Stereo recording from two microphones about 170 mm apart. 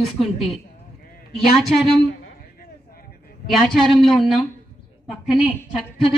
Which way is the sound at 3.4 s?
Centre (ahead or behind).